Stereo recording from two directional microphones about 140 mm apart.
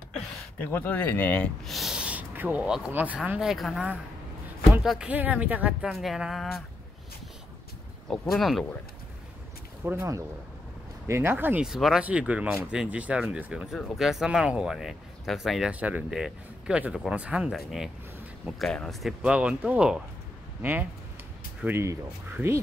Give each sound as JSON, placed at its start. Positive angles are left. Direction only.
{"t": 0.6, "sound": "speech", "side_deg": 15}
{"t": 1.7, "sound": "speech", "side_deg": 0}
{"t": 4.8, "sound": "speech", "side_deg": -5}
{"t": 8.1, "sound": "speech", "side_deg": 0}
{"t": 9.8, "sound": "speech", "side_deg": -20}
{"t": 11.6, "sound": "speech", "side_deg": -5}
{"t": 21.5, "sound": "speech", "side_deg": -15}